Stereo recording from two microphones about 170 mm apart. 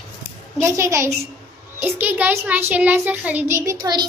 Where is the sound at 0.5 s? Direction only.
15° right (ahead or behind).